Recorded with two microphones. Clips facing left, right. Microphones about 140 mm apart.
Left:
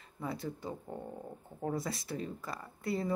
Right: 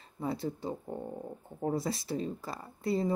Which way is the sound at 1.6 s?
25° right (ahead or behind).